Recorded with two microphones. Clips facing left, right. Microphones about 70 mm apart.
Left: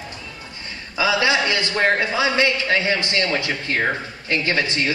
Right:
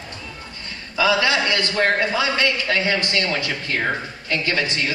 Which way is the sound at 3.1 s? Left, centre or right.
Left.